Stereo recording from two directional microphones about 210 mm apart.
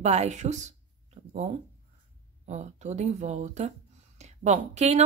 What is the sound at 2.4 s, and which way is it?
Speech, 35° right (ahead or behind).